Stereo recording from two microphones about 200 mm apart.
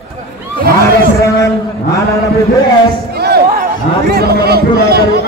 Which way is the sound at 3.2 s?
50° right (ahead or behind).